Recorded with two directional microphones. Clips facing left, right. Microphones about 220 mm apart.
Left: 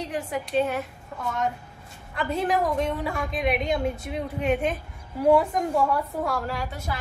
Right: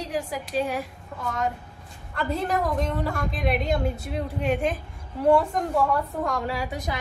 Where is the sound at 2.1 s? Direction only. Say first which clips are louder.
Left 1 dB; centre (ahead or behind).